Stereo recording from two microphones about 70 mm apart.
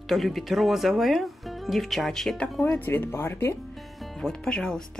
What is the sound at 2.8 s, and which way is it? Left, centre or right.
Speech, left.